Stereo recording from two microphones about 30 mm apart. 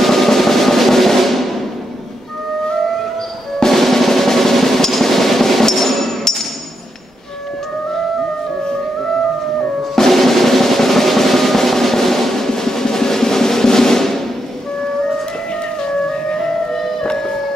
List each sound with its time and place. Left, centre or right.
0.0 s drum: centre
3.7 s drum: centre
9.9 s drum: centre
15.8 s music: left